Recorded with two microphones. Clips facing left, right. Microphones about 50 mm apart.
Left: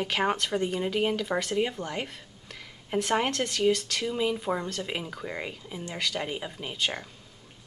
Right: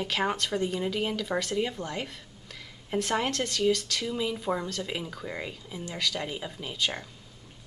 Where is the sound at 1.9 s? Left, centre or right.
Left.